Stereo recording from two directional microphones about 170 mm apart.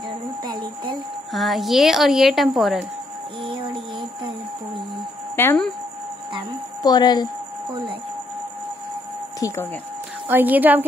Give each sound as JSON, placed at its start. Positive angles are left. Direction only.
{"t": 0.4, "sound": "music", "side_deg": -25}
{"t": 1.3, "sound": "a woman's voice", "side_deg": 0}
{"t": 5.3, "sound": "speech", "side_deg": 15}
{"t": 6.8, "sound": "speech", "side_deg": 25}
{"t": 9.4, "sound": "speech", "side_deg": 20}
{"t": 10.2, "sound": "a woman's voice", "side_deg": -10}